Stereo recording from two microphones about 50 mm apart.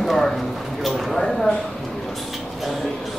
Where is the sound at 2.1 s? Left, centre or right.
Centre.